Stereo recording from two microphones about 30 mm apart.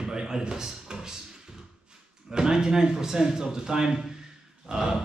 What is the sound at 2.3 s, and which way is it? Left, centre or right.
A man's voice, right.